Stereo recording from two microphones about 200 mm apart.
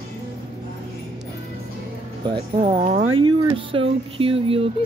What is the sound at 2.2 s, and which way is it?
Speech, 30° right (ahead or behind).